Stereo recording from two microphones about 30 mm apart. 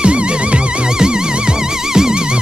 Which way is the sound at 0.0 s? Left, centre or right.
Right.